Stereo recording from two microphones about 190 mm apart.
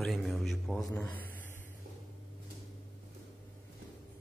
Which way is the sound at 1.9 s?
50° right (ahead or behind).